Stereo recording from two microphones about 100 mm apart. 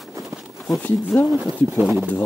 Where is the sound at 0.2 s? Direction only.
Centre (ahead or behind).